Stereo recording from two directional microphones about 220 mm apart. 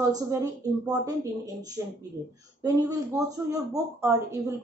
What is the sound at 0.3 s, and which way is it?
Speech, 15° right (ahead or behind).